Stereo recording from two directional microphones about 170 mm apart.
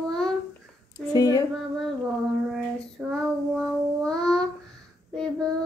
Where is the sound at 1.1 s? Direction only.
20° left (ahead or behind).